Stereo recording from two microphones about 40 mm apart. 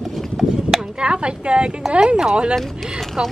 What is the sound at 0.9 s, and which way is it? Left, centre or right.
Speech, right.